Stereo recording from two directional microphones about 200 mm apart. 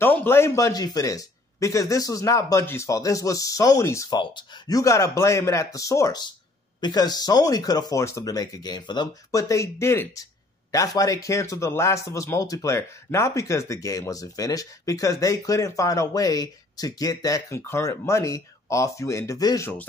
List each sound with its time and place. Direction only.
0.0 s speech: 10° left (ahead or behind)